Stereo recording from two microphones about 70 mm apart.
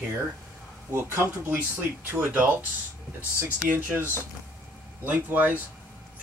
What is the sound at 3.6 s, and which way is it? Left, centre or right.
Speech, right.